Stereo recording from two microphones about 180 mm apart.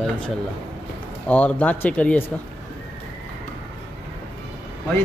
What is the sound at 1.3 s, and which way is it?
Speech, 10° left (ahead or behind).